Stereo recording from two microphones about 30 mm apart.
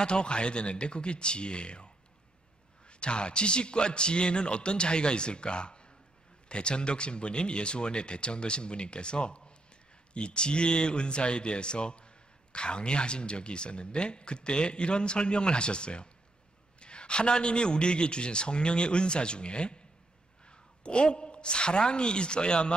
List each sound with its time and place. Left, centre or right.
0.0 s speech: left
2.9 s a woman's voice: left